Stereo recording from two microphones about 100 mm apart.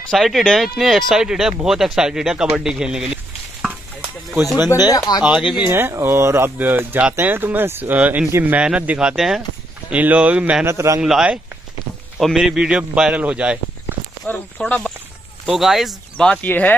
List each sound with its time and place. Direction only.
0.1 s a man's voice: centre (ahead or behind)
4.6 s speech: 40° left (ahead or behind)
5.2 s speech: 5° right (ahead or behind)
5.7 s a man's voice: 25° right (ahead or behind)
10.6 s speech: 30° right (ahead or behind)
11.0 s a man's voice: 5° right (ahead or behind)
14.2 s speech: 10° left (ahead or behind)
15.4 s speech: 5° right (ahead or behind)
16.2 s speech: 10° left (ahead or behind)